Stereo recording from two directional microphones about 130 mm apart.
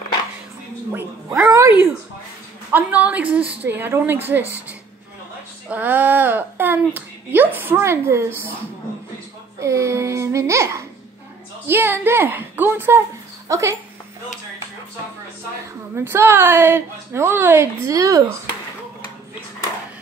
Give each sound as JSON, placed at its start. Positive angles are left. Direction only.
{"t": 1.4, "sound": "a sound", "side_deg": -20}
{"t": 2.7, "sound": "speech", "side_deg": -10}
{"t": 9.6, "sound": "a woman's voice", "side_deg": -20}
{"t": 15.9, "sound": "a woman's voice", "side_deg": -20}